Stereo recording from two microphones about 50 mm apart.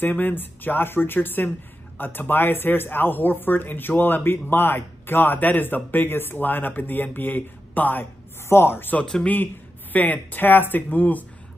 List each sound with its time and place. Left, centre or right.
0.0 s speech: left
8.5 s speech: left
9.2 s speech: left